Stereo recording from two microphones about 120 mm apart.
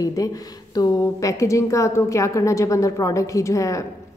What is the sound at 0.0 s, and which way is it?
A woman's voice, 30° left (ahead or behind).